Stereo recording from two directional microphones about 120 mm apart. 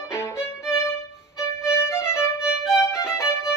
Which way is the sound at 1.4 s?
20° left (ahead or behind).